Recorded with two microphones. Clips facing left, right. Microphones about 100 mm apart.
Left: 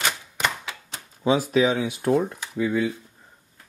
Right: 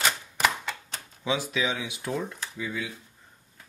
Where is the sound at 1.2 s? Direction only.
45° left (ahead or behind).